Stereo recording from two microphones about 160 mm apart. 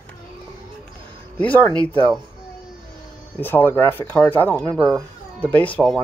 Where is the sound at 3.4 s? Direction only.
15° left (ahead or behind).